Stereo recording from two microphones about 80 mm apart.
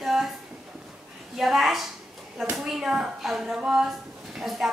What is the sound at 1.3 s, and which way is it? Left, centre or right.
A woman's voice, centre.